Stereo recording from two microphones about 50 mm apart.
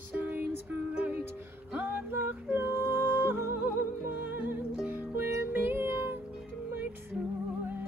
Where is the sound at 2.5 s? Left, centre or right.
Right.